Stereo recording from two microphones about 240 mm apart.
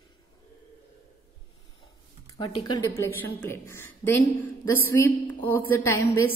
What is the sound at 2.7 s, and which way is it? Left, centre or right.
A woman's voice, centre.